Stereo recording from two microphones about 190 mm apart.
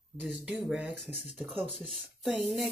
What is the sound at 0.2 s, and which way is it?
Speech, 5° right (ahead or behind).